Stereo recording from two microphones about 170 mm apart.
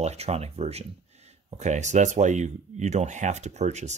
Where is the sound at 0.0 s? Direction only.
40° right (ahead or behind).